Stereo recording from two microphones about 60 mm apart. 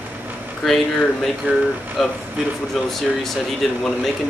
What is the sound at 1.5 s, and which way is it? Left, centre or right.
Speech, right.